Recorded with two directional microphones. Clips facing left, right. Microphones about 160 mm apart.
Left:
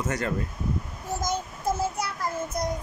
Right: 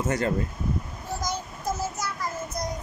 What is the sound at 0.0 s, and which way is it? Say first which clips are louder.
Speech: right 3 dB; 30° right (ahead or behind).